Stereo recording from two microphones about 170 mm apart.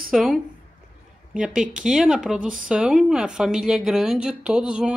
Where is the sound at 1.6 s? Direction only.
5° right (ahead or behind).